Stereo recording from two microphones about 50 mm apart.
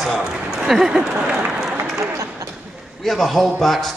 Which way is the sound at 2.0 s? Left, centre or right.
Right.